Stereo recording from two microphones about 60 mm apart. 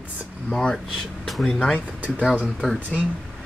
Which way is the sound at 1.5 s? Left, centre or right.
Centre.